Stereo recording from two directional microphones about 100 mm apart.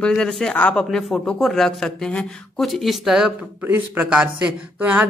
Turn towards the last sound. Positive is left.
turn(degrees=-15)  # may be behind; listen again after turning